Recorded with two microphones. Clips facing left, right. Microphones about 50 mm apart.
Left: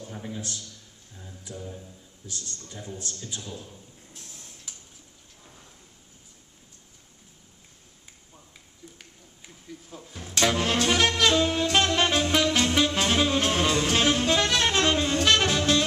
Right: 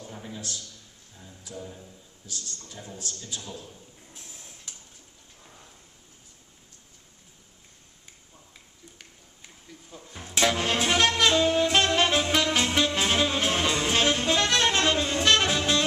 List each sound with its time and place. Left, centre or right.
0.0 s a sound: centre
1.5 s speech: centre
2.2 s a man's voice: left
4.2 s a sound: centre
4.7 s tick-tock: centre
9.5 s a sound: centre
10.1 s music: centre
11.6 s saxophone: centre
12.4 s music: centre